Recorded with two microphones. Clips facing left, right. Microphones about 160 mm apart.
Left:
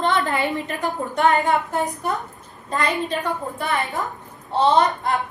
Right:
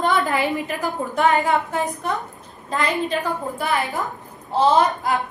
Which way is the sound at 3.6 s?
Centre (ahead or behind).